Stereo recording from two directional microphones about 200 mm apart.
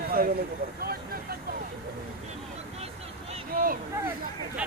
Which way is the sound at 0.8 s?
50° right (ahead or behind).